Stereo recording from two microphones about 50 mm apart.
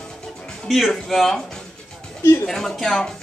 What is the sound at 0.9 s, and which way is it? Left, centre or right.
Speech, centre.